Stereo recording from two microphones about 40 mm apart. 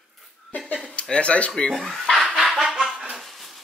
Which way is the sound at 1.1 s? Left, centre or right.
Left.